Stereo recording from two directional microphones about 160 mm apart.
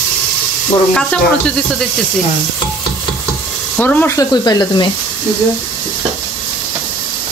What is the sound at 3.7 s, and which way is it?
Sizzle, 10° left (ahead or behind).